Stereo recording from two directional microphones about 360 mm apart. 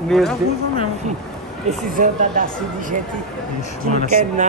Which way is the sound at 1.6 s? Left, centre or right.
Right.